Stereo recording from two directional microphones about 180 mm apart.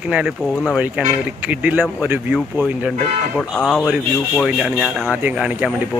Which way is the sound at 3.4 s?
5° left (ahead or behind).